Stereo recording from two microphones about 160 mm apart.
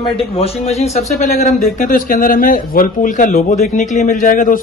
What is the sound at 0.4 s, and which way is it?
A man's voice, 40° left (ahead or behind).